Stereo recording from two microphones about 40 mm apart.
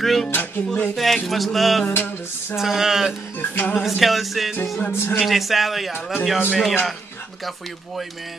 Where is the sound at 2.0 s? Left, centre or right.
Left.